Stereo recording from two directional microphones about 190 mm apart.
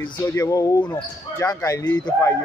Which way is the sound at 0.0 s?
15° left (ahead or behind).